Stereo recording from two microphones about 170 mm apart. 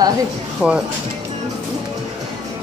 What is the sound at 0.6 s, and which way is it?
Speech, 15° left (ahead or behind).